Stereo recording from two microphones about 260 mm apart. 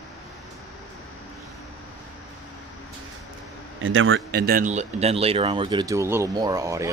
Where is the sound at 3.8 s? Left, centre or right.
Right; by 6.9 s centre.